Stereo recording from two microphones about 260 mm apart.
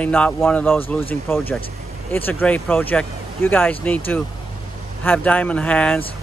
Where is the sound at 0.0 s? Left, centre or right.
Centre.